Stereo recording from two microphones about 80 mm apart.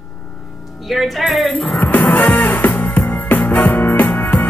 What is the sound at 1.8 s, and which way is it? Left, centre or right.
Music, left.